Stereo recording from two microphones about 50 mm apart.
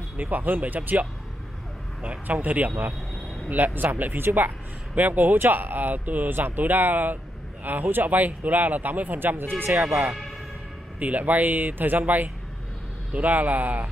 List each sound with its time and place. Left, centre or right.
0.2 s speech: right
2.0 s speech: right
9.8 s speech: centre
11.0 s speech: right